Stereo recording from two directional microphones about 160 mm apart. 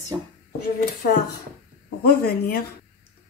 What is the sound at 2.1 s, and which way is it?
Speech, 75° left (ahead or behind).